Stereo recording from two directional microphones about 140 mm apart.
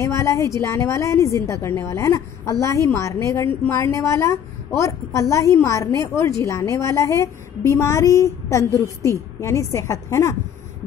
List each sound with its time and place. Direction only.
0.0 s a woman's voice: 20° left (ahead or behind)